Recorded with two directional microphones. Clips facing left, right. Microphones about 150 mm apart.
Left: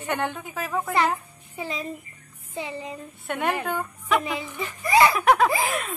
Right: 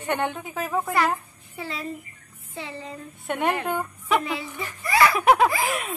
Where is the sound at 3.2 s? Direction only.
Centre (ahead or behind).